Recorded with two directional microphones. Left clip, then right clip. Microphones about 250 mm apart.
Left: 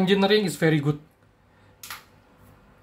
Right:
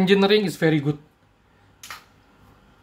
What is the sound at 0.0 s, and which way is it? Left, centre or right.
Speech, centre.